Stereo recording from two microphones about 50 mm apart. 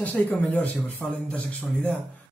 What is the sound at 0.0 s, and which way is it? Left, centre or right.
Speech, left.